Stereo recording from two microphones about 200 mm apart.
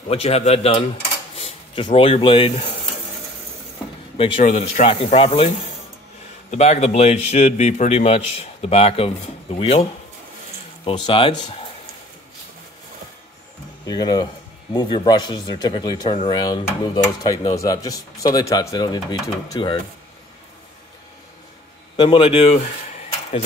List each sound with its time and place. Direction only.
0.1 s a man's voice: 30° left (ahead or behind)
4.2 s a man's voice: 30° left (ahead or behind)
6.5 s speech: 35° left (ahead or behind)
10.9 s a man's voice: 25° left (ahead or behind)
13.8 s a man's voice: 20° left (ahead or behind)
21.9 s a man's voice: 25° left (ahead or behind)